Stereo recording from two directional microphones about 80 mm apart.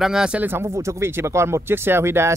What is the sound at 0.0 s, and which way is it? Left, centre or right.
Speech, centre.